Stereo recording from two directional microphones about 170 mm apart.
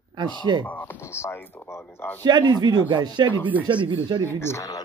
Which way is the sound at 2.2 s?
25° right (ahead or behind).